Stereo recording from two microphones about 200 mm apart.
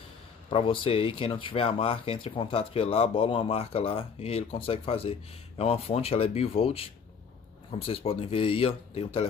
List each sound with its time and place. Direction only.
0.5 s speech: 25° left (ahead or behind)